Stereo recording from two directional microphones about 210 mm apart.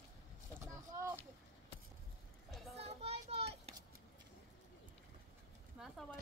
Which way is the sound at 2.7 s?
30° right (ahead or behind).